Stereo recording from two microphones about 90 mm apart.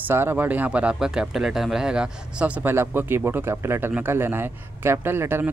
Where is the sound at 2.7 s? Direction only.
25° right (ahead or behind).